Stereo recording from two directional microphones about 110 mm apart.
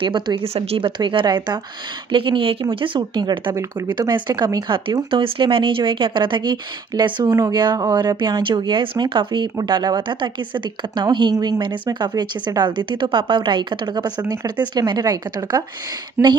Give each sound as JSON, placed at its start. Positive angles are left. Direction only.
{"t": 0.0, "sound": "a woman's voice", "side_deg": -50}
{"t": 0.8, "sound": "speech", "side_deg": -45}
{"t": 2.1, "sound": "a woman's voice", "side_deg": -50}
{"t": 11.3, "sound": "speech", "side_deg": -30}
{"t": 11.6, "sound": "a woman's voice", "side_deg": -45}
{"t": 16.2, "sound": "speech", "side_deg": -20}